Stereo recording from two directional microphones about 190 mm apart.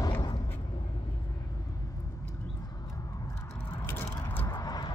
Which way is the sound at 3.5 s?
10° left (ahead or behind).